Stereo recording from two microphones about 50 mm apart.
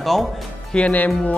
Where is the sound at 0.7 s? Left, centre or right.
Left.